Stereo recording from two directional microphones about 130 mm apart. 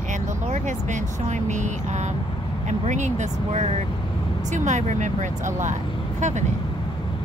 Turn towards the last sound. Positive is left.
turn(degrees=-65)  # may be behind; listen again after turning